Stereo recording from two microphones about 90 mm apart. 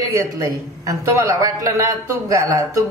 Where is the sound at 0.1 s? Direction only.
35° right (ahead or behind).